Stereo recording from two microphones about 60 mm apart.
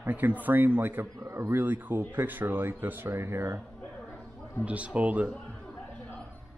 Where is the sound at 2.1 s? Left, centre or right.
Right.